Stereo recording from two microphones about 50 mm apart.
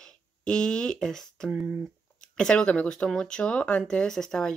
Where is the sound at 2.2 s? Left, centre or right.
Centre.